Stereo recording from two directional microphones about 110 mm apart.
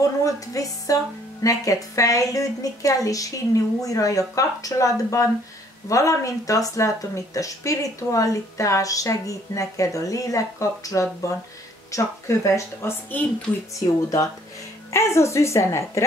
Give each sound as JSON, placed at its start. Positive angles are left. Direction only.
{"t": 0.2, "sound": "a woman's voice", "side_deg": 30}
{"t": 13.1, "sound": "a woman's voice", "side_deg": 15}
{"t": 13.7, "sound": "a woman's voice", "side_deg": 30}